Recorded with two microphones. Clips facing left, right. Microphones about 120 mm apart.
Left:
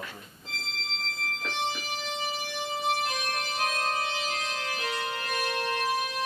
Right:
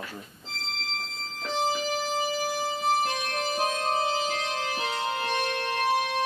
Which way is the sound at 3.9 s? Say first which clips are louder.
Right 5 dB; 30° right (ahead or behind).